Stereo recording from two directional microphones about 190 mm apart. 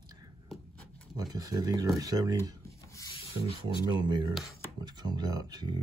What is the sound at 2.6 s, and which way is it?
Rub, 15° left (ahead or behind).